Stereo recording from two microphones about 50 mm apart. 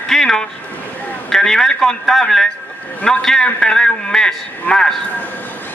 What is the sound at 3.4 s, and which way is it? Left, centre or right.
A man's voice, left.